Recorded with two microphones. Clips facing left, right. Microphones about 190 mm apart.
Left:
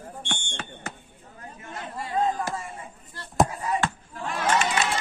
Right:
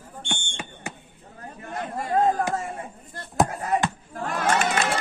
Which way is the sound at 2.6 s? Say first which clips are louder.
Right 5 dB; 50° right (ahead or behind).